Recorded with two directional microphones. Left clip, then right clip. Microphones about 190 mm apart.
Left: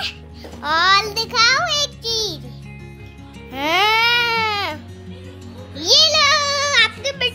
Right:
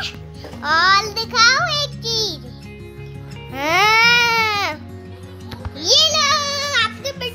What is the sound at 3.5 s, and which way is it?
Music, 5° left (ahead or behind).